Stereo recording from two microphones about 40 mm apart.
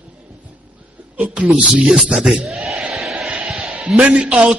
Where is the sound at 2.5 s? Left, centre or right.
Centre.